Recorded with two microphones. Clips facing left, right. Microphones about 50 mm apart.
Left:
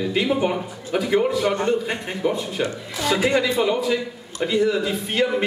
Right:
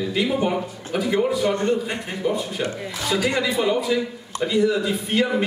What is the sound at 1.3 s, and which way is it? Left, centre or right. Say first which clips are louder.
Speech: even; left.